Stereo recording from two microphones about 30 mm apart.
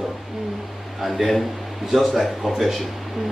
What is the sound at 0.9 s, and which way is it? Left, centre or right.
A man's voice, centre.